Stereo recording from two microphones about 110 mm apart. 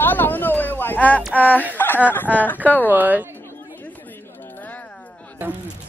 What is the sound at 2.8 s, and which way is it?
Speech, 15° right (ahead or behind).